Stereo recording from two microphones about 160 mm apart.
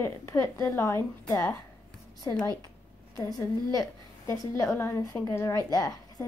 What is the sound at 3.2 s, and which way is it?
A woman's voice, 25° left (ahead or behind).